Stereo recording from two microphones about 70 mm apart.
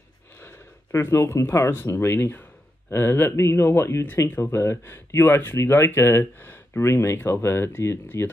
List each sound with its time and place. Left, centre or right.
0.4 s speech: left